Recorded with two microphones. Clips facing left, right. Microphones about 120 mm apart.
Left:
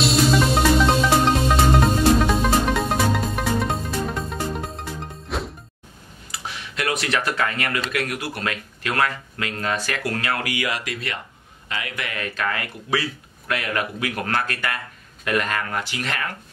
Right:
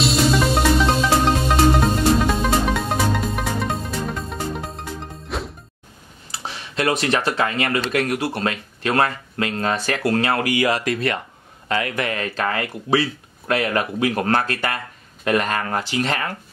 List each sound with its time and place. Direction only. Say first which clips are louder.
0.0 s music: even; centre (ahead or behind)
6.3 s speech: right 4 dB; 30° right (ahead or behind)